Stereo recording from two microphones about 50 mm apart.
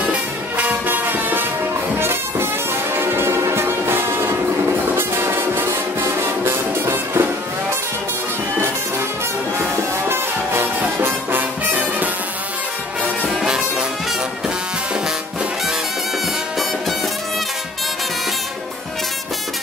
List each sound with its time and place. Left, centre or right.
0.6 s music: right
2.0 s music: right
9.6 s music: right
13.3 s music: centre